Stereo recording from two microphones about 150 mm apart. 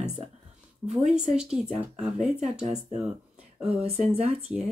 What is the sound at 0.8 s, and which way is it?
Speech, 45° right (ahead or behind).